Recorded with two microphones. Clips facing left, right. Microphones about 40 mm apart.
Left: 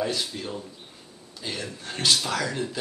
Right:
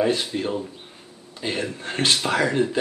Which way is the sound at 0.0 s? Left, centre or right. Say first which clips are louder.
Right 7 dB; right.